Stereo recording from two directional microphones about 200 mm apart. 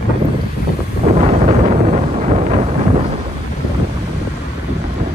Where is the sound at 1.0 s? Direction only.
30° right (ahead or behind).